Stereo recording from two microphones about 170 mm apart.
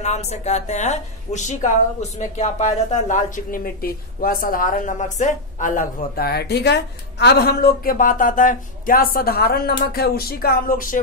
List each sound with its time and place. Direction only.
0.0 s a woman's voice: 40° left (ahead or behind)